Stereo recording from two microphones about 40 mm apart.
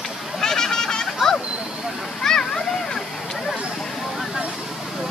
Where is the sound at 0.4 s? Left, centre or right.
Centre.